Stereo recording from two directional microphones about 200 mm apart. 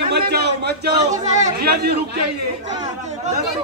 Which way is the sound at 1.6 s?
50° right (ahead or behind).